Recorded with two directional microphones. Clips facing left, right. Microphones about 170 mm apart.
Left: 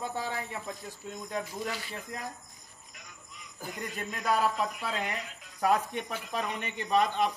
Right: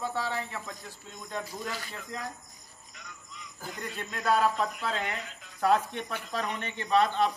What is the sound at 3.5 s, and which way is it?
Speech, 10° left (ahead or behind).